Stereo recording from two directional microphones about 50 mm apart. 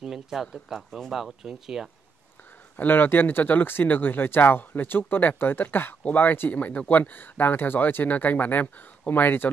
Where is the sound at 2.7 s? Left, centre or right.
Left.